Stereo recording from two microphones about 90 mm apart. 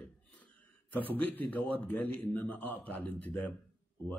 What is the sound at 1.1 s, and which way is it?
Speech, 20° left (ahead or behind).